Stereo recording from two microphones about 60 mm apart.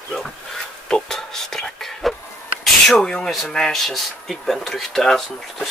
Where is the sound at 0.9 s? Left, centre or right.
Centre.